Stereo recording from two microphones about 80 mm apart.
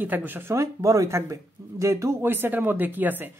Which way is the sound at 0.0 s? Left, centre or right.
Right.